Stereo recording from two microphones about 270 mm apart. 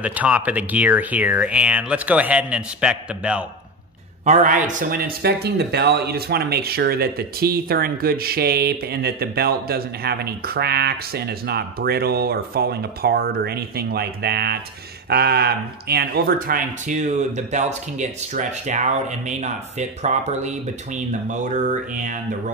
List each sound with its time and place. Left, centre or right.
0.0 s speech: centre
4.2 s a man's voice: right